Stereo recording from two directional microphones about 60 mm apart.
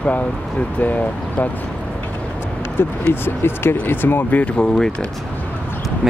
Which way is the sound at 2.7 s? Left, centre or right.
Left.